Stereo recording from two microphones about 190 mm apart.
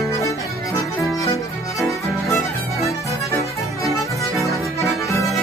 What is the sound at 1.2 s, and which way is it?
Music, 15° left (ahead or behind).